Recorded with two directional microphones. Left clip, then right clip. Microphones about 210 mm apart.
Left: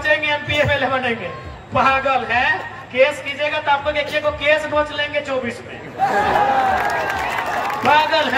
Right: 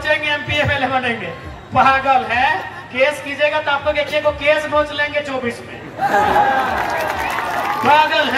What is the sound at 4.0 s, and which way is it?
Speech, 20° left (ahead or behind).